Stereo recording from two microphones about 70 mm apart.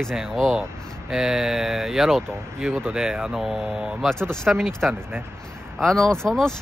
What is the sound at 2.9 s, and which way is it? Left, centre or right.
Speech, centre.